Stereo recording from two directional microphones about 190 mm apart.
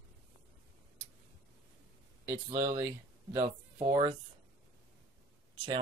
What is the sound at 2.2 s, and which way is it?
Speech, 15° right (ahead or behind).